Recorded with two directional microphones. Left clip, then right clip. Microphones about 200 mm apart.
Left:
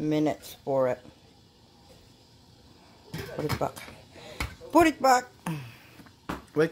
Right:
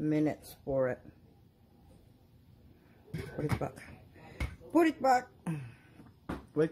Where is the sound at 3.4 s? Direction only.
15° left (ahead or behind).